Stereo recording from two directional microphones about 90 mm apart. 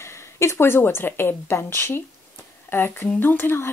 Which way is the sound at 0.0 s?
30° left (ahead or behind).